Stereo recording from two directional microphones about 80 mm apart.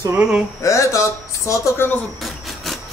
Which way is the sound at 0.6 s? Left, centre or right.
Left.